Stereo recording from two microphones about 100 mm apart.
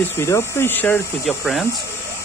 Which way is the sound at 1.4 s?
Centre (ahead or behind).